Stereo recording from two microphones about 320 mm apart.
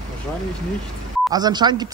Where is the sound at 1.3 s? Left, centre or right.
Centre.